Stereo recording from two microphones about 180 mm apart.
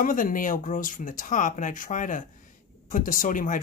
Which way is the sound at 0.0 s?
50° left (ahead or behind).